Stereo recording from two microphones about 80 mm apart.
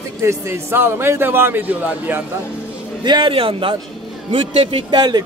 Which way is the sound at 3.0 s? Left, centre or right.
Right.